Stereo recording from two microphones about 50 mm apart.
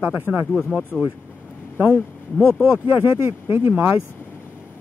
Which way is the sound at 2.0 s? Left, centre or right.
Left.